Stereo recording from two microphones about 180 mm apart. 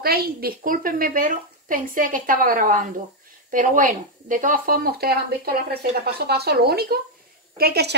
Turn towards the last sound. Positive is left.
turn(degrees=-60)  # may be behind; listen again after turning